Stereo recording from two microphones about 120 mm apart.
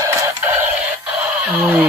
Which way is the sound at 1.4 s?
10° right (ahead or behind).